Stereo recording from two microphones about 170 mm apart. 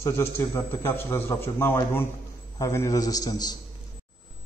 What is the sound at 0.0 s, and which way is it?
A man's voice, 15° left (ahead or behind).